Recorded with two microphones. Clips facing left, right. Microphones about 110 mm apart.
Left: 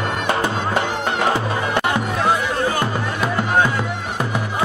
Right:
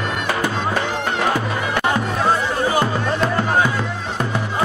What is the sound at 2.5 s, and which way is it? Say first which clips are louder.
Music: right 2 dB; 10° right (ahead or behind).